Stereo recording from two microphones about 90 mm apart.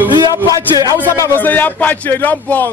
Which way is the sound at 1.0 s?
30° left (ahead or behind).